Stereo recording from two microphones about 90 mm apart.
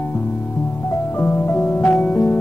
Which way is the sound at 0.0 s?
20° left (ahead or behind).